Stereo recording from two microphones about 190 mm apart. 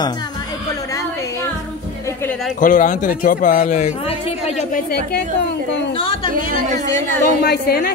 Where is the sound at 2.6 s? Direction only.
45° left (ahead or behind).